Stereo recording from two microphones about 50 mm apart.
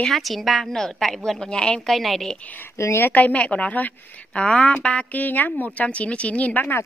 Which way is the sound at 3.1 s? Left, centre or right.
Left.